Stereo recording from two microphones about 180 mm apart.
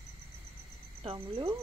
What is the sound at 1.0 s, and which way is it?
Speech, 30° right (ahead or behind).